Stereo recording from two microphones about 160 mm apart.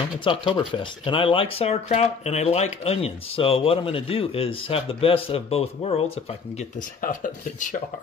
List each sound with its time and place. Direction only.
0.2 s speech: 30° left (ahead or behind)
7.0 s speech: 55° left (ahead or behind)